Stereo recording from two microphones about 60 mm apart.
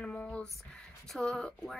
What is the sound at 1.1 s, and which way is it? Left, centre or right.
Speech, centre.